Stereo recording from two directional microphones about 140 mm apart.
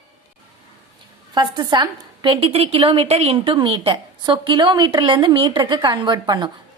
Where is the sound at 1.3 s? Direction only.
30° right (ahead or behind).